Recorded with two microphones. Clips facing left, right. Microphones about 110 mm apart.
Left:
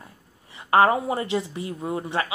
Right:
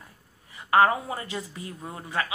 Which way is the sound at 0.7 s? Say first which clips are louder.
Left 2 dB; 30° left (ahead or behind).